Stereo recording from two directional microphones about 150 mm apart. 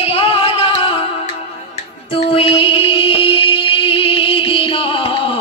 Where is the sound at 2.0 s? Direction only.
40° left (ahead or behind).